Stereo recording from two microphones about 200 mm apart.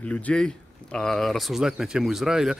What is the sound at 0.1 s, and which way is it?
Speech, 5° left (ahead or behind).